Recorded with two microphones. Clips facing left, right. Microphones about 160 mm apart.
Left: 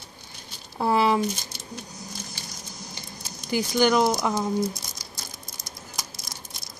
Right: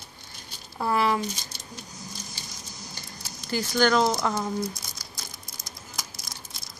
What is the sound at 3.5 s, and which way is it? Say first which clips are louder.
Speech: left 2 dB; 15° left (ahead or behind).